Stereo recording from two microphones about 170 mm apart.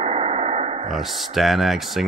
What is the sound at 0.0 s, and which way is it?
Dog, 35° right (ahead or behind).